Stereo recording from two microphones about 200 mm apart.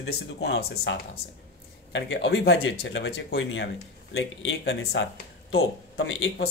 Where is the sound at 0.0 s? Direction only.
60° left (ahead or behind).